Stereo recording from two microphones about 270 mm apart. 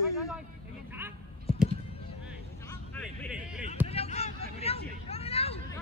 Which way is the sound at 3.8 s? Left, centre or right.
Left.